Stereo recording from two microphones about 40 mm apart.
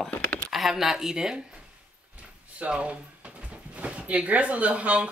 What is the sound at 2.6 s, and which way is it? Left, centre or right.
Speech, right.